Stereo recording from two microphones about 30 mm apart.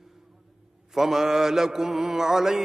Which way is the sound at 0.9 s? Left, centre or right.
Centre.